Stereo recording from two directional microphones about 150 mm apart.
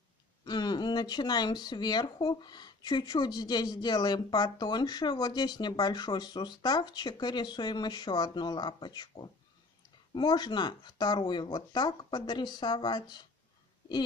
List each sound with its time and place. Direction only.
0.5 s speech: 30° left (ahead or behind)